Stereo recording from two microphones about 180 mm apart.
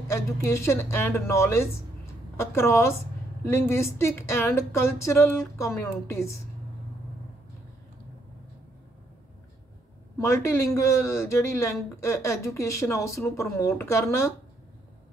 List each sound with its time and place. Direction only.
0.1 s speech: 15° left (ahead or behind)
10.1 s speech: 15° left (ahead or behind)